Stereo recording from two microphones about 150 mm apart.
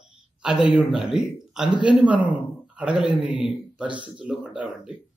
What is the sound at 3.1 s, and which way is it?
Speech, 30° left (ahead or behind).